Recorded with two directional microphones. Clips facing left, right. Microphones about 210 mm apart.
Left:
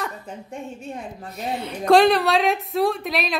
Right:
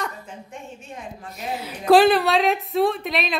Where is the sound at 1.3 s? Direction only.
5° right (ahead or behind).